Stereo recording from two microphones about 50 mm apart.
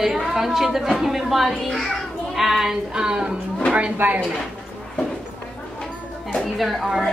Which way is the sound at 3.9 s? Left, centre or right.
Right.